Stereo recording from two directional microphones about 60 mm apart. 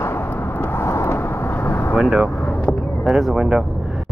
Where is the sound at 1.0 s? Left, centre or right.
Left.